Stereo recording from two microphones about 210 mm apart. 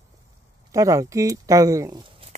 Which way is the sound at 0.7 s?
15° right (ahead or behind).